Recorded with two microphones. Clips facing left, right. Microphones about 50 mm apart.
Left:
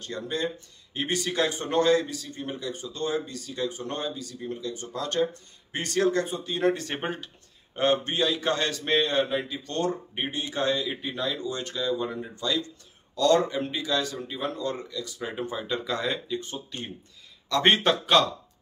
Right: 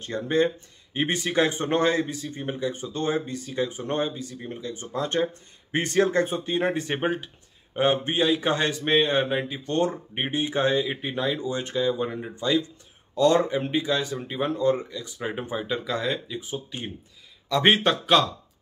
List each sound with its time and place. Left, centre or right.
0.0 s a man's voice: right
15.7 s speech: centre